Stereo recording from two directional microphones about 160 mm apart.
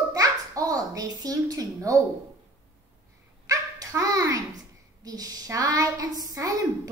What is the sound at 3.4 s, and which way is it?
A child's voice, 20° right (ahead or behind).